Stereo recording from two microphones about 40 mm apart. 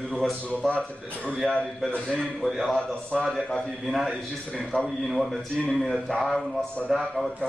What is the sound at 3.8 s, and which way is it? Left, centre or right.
Speech, centre.